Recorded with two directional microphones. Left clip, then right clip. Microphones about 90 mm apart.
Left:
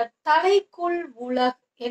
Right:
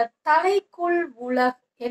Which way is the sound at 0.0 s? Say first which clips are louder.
Even; 15° left (ahead or behind).